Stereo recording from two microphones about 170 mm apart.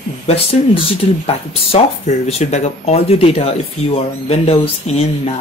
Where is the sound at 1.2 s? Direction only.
35° left (ahead or behind).